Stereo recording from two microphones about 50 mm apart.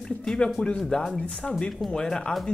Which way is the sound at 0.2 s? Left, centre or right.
Centre.